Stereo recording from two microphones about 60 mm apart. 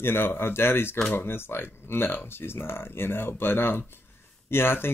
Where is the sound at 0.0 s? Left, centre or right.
Left.